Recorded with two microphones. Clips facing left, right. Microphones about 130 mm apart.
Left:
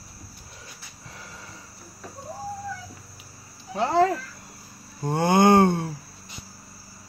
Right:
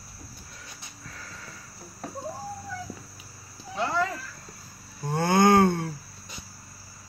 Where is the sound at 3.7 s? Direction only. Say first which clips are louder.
Left 7 dB; 50° left (ahead or behind).